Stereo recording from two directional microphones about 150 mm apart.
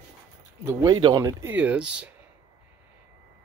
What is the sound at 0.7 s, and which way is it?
Speech, 30° right (ahead or behind).